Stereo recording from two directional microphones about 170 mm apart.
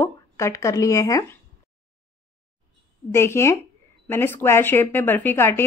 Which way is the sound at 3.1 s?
15° left (ahead or behind).